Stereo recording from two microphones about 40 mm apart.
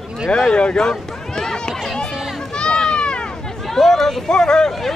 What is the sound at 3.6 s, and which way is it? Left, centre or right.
Chatter, centre.